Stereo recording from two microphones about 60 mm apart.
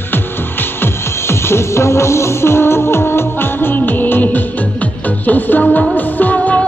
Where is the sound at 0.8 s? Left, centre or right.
Left.